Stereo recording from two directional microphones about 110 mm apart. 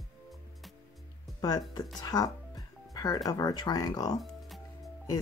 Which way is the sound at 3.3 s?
35° left (ahead or behind).